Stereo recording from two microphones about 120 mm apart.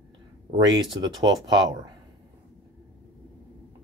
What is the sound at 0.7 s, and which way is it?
Speech, 35° right (ahead or behind).